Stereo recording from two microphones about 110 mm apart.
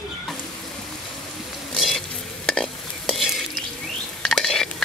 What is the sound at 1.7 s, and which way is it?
Stir, centre (ahead or behind).